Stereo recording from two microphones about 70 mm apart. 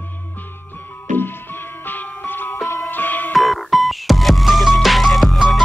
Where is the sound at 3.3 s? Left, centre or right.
Centre.